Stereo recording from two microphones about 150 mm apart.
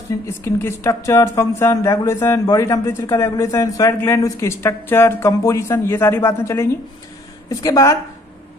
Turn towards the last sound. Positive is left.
turn(degrees=25)  # may be behind; listen again after turning